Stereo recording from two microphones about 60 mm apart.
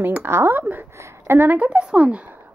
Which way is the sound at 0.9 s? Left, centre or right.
Right.